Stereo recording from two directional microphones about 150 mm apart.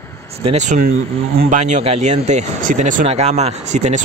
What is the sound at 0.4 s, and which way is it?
Speech, 45° right (ahead or behind).